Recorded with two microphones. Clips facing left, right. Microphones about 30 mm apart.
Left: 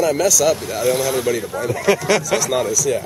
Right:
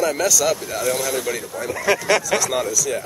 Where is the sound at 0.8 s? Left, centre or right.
Centre.